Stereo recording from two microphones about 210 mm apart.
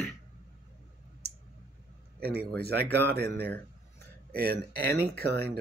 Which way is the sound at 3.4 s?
10° left (ahead or behind).